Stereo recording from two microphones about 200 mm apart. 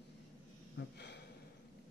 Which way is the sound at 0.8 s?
60° left (ahead or behind).